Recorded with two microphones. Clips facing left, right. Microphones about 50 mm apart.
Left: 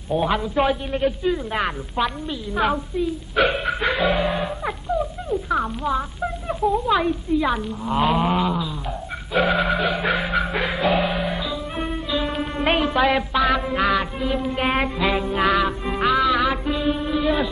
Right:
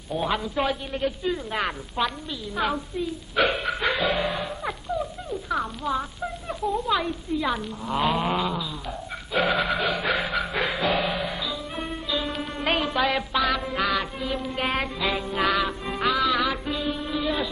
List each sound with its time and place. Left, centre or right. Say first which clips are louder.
0.1 s a man's voice: left 5 dB; centre
9.8 s music: left 3 dB; centre
10.1 s music: left 3 dB; centre
17.2 s a sound: left 5 dB; centre